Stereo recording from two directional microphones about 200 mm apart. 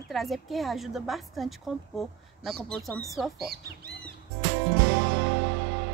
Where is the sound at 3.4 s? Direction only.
50° right (ahead or behind).